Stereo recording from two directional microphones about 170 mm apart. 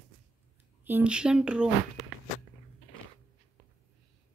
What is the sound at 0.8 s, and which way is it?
A woman's voice, 10° right (ahead or behind).